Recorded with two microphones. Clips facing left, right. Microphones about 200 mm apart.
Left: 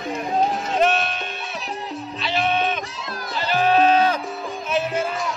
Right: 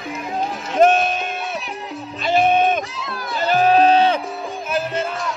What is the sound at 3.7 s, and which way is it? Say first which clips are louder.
Music: right 1 dB; 30° right (ahead or behind).